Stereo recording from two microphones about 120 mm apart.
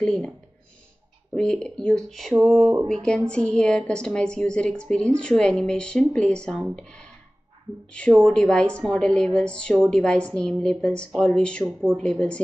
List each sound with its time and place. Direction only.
0.0 s speech: 5° left (ahead or behind)
1.3 s a woman's voice: 5° left (ahead or behind)
11.6 s speech: 15° right (ahead or behind)
12.0 s a woman's voice: 10° left (ahead or behind)